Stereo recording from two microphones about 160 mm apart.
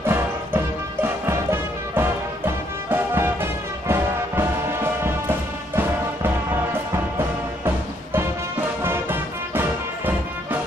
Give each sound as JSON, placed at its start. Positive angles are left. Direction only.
{"t": 0.0, "sound": "music", "side_deg": -15}
{"t": 5.8, "sound": "music", "side_deg": -15}